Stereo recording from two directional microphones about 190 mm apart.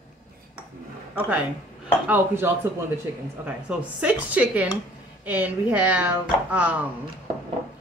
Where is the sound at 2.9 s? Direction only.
10° right (ahead or behind).